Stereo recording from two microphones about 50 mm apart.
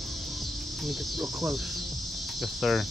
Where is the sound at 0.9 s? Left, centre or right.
Centre.